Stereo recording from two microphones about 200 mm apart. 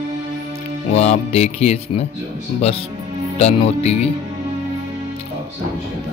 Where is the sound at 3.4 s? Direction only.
30° left (ahead or behind).